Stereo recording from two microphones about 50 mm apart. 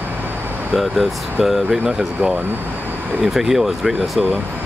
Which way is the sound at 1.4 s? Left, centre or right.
Centre.